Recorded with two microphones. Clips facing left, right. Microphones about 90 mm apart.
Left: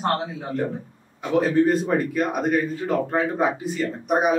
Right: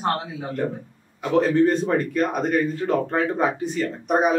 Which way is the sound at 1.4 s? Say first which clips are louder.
Even; 5° left (ahead or behind).